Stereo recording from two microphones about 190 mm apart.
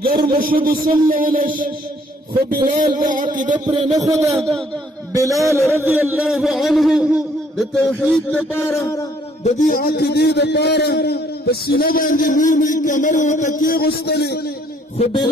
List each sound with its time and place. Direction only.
0.0 s speech: 50° right (ahead or behind)
3.6 s a man's voice: 25° right (ahead or behind)
4.3 s a man's voice: centre (ahead or behind)
5.1 s a man's voice: 15° right (ahead or behind); by 8.0 s centre (ahead or behind)
8.3 s music: 10° left (ahead or behind)
9.4 s a man's voice: 45° left (ahead or behind); by 14.4 s 60° left (ahead or behind)